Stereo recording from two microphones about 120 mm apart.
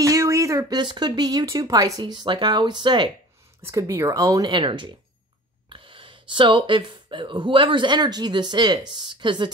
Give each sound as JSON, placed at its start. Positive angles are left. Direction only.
{"t": 0.0, "sound": "speech", "side_deg": -25}
{"t": 3.6, "sound": "speech", "side_deg": -25}
{"t": 4.5, "sound": "speech", "side_deg": -40}